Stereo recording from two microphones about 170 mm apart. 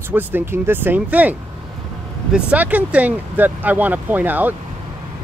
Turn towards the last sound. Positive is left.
turn(degrees=-10)  # may be behind; listen again after turning